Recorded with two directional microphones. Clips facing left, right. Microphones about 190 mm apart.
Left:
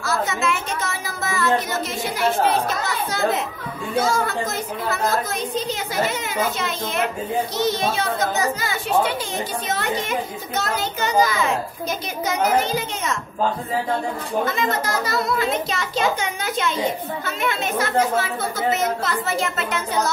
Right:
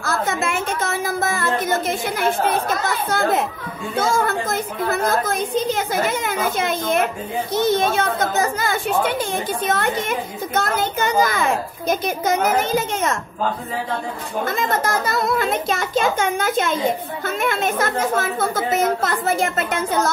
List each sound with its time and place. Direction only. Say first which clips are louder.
0.0 s a sound: right 1 dB; 50° right (ahead or behind)
3.1 s a child's voice: right 3 dB; 50° right (ahead or behind)
14.4 s a child's voice: right 3 dB; 50° right (ahead or behind)